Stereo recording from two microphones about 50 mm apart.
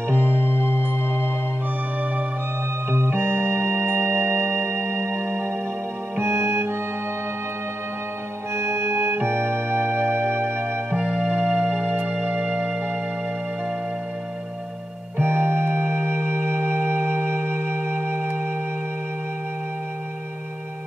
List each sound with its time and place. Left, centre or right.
0.1 s music: right
0.6 s music: left
2.9 s organ: right
6.1 s music: right
8.5 s music: right
11.0 s music: centre
11.4 s music: right
15.1 s music: right